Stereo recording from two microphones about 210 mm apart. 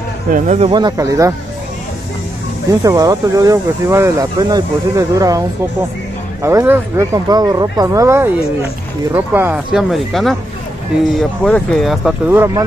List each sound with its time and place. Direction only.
0.3 s speech: 35° right (ahead or behind)
0.7 s speech: 20° right (ahead or behind)
2.8 s speech: 15° right (ahead or behind)
6.4 s speech: 10° right (ahead or behind)